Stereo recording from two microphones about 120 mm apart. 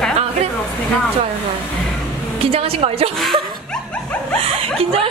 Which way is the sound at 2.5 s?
55° right (ahead or behind).